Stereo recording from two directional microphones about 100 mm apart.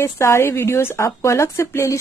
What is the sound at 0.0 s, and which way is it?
Speech, 25° left (ahead or behind).